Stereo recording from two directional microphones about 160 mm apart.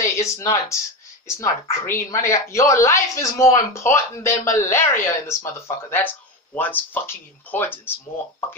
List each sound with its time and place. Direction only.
0.0 s a woman's voice: 20° left (ahead or behind)